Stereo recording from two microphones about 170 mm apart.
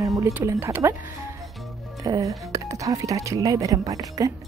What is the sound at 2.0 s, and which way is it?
Speech, 20° right (ahead or behind).